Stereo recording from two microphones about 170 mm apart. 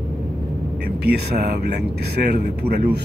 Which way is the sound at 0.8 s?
75° right (ahead or behind).